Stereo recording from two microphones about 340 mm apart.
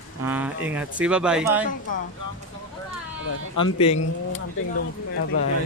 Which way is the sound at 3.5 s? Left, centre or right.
Centre.